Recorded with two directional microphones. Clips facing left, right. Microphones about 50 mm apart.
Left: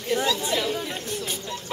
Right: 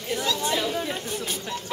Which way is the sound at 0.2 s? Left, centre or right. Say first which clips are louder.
Left 2 dB; centre.